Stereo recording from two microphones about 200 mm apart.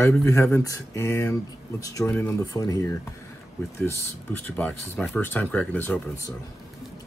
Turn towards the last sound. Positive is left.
turn(degrees=10)  # may be behind; listen again after turning